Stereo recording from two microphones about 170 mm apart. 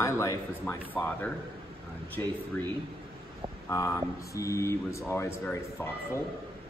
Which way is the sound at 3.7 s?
15° left (ahead or behind).